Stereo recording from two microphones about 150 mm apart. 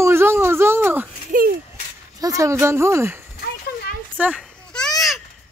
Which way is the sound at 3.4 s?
90° left.